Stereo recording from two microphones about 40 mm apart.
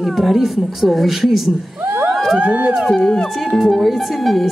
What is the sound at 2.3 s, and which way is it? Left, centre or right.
Speech, right.